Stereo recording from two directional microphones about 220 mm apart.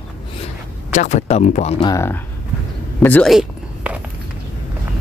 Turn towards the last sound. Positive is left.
turn(degrees=-5)  # may be behind; listen again after turning